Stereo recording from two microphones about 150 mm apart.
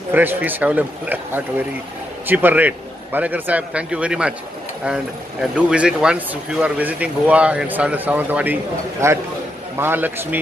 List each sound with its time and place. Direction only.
0.1 s speech: 15° right (ahead or behind)
5.4 s a man's voice: 5° right (ahead or behind)